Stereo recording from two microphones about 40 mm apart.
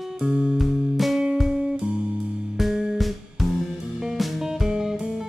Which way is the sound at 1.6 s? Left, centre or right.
Centre.